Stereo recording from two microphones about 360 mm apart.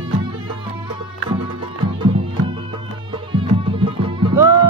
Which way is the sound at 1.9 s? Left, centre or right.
Centre.